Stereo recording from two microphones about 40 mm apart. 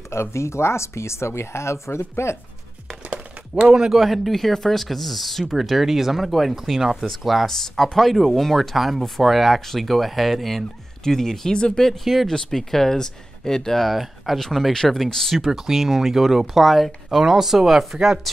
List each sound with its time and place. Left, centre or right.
0.6 s speech: left
3.6 s speech: centre
11.5 s speech: left
12.0 s speech: centre
12.3 s speech: centre
15.5 s speech: centre